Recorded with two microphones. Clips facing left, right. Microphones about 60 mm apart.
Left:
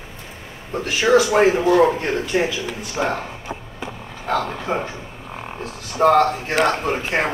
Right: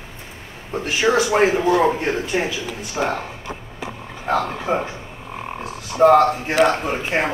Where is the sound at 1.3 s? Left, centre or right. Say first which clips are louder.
Left 1 dB; centre.